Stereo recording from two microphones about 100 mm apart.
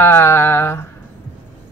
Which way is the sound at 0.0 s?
25° left (ahead or behind).